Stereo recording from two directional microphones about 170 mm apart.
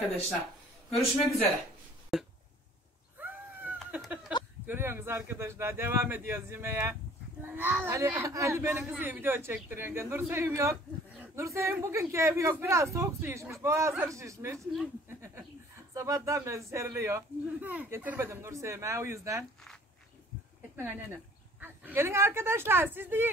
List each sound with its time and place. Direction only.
0.8 s a man's voice: centre (ahead or behind)
2.1 s a sound: centre (ahead or behind)
3.2 s cat: 10° right (ahead or behind)
3.9 s a sound: 5° right (ahead or behind)
4.6 s speech: 15° right (ahead or behind)
20.7 s a woman's voice: 10° right (ahead or behind)